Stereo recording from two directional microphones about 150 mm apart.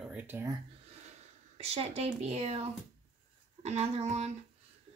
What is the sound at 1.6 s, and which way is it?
Speech, 45° right (ahead or behind).